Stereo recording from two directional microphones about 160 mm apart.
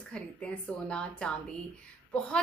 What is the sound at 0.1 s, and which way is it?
Speech, 5° left (ahead or behind).